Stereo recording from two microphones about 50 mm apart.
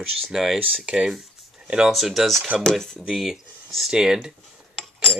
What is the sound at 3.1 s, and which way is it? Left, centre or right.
Speech, centre.